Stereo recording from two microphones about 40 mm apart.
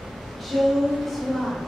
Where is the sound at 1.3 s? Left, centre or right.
Centre.